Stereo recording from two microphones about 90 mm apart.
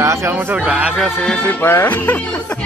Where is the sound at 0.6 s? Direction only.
10° right (ahead or behind).